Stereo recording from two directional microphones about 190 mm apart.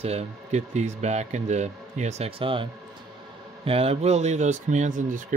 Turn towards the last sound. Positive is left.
turn(degrees=-40)  # may be behind; listen again after turning